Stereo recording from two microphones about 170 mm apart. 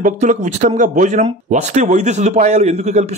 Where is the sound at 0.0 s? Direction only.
45° right (ahead or behind).